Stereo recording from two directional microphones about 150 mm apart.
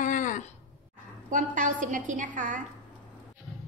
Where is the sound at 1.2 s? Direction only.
60° right (ahead or behind).